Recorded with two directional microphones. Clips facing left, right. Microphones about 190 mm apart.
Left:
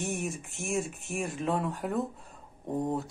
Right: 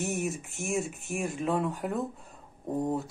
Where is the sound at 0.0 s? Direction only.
Centre (ahead or behind).